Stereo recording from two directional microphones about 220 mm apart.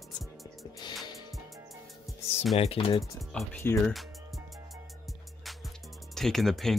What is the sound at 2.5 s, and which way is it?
Speech, 25° left (ahead or behind).